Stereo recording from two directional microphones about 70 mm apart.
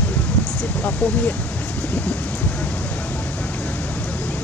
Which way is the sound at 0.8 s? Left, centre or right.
Left.